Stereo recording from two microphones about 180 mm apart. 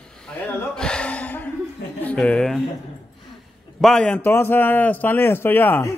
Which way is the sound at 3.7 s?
5° left (ahead or behind).